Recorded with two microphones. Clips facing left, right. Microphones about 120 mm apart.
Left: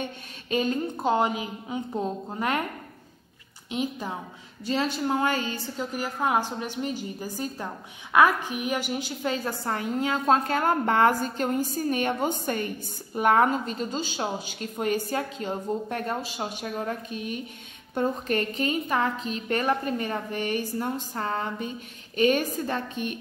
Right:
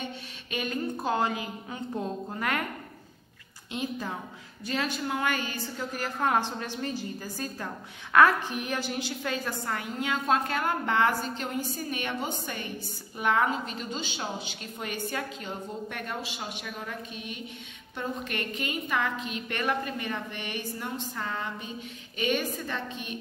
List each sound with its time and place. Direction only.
0.0 s a woman's voice: 35° left (ahead or behind)
3.7 s a woman's voice: 20° left (ahead or behind)
5.8 s a woman's voice: 15° left (ahead or behind); by 23.1 s 45° left (ahead or behind)